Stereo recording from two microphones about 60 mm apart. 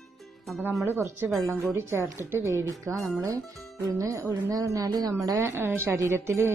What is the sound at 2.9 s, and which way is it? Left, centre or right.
Speech, right.